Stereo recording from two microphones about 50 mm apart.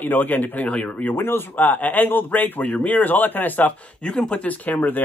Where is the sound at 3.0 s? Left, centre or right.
Left.